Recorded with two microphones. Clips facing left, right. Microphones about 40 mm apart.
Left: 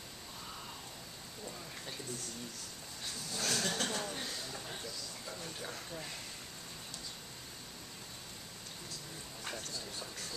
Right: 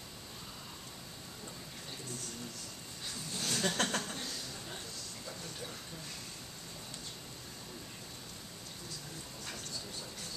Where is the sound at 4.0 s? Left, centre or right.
Centre.